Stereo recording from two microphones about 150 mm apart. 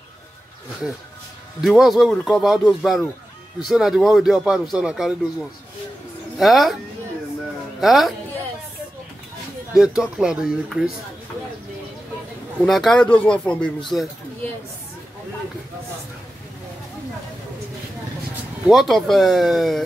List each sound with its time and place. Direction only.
1.6 s speech: centre (ahead or behind)
6.3 s speech: centre (ahead or behind)
7.8 s speech: centre (ahead or behind)
9.8 s speech: 5° right (ahead or behind)
12.6 s speech: centre (ahead or behind)
18.7 s speech: centre (ahead or behind)